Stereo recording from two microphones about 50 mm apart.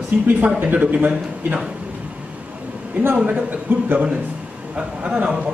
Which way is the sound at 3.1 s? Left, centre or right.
Right.